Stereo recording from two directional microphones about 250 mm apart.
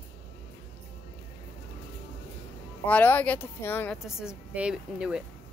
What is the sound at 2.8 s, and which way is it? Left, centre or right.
A woman's voice, centre.